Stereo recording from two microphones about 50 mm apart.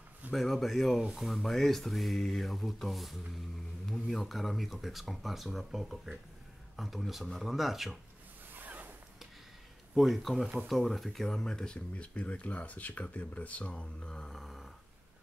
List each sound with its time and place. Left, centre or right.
0.3 s mantra: centre
8.5 s zipper: right
9.9 s mantra: centre
11.4 s speech: centre
14.0 s speech: centre
14.4 s a sound: centre